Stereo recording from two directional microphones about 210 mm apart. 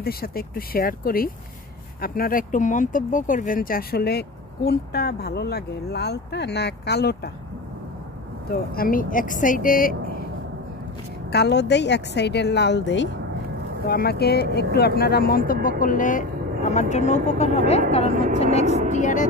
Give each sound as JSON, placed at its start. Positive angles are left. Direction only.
{"t": 0.0, "sound": "speech", "side_deg": 45}
{"t": 8.5, "sound": "speech", "side_deg": 45}
{"t": 11.3, "sound": "speech", "side_deg": 55}
{"t": 13.8, "sound": "speech", "side_deg": 45}